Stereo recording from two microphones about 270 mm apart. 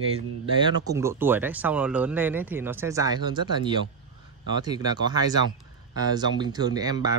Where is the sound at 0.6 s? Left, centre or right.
Centre.